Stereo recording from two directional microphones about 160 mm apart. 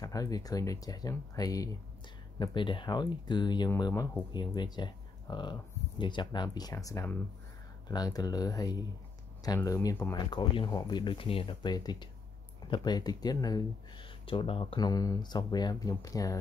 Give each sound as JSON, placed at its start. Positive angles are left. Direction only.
{"t": 0.0, "sound": "speech", "side_deg": 20}
{"t": 10.1, "sound": "speech", "side_deg": 25}
{"t": 14.2, "sound": "speech", "side_deg": 35}